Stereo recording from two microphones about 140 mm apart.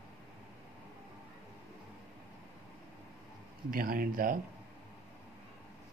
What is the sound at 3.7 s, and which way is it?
Speech, 85° right.